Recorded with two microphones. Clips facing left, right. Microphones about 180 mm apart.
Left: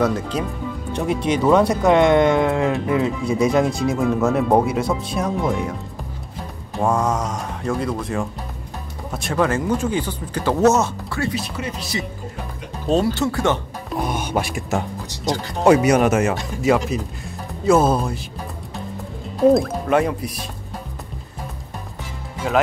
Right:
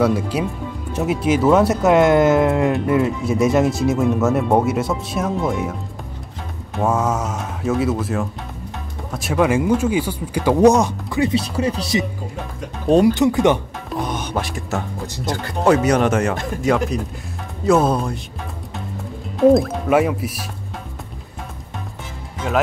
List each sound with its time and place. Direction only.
0.0 s speech: 10° right (ahead or behind)
6.8 s speech: 5° right (ahead or behind)
11.3 s speech: 35° right (ahead or behind)
12.8 s speech: 15° right (ahead or behind)
13.8 s music: 10° left (ahead or behind)
15.6 s speech: 10° left (ahead or behind)
19.5 s speech: centre (ahead or behind)
22.4 s speech: 5° right (ahead or behind)